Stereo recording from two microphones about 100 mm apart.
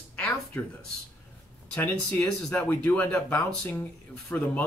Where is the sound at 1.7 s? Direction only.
15° left (ahead or behind).